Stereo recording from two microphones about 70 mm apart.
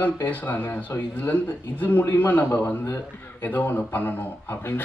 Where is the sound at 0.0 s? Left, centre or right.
Left.